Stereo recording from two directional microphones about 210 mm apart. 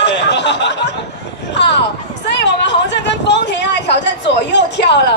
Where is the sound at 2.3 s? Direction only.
55° left (ahead or behind).